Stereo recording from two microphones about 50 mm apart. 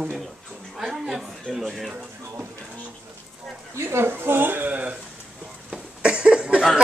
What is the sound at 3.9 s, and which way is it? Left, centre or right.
Speech, right.